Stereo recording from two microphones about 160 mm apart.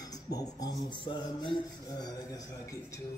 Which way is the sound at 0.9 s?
30° left (ahead or behind).